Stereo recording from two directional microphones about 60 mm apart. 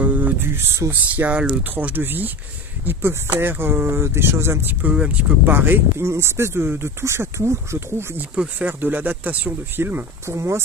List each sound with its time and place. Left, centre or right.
0.0 s a sound: right
0.4 s speech: right
1.3 s speech: right
4.9 s speech: right
5.9 s speech: right
8.4 s speech: right
10.2 s speech: right